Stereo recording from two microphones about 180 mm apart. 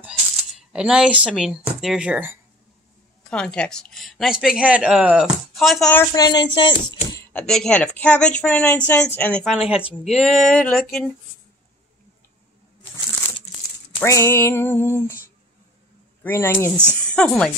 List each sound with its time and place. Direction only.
0.6 s speech: 5° right (ahead or behind)
3.3 s speech: 5° left (ahead or behind)
6.1 s speech: 20° left (ahead or behind)
7.3 s a woman's voice: 5° left (ahead or behind)
9.8 s speech: 30° left (ahead or behind)
10.1 s speech: centre (ahead or behind)
13.9 s a woman's voice: 15° left (ahead or behind)
16.2 s a woman's voice: 15° left (ahead or behind)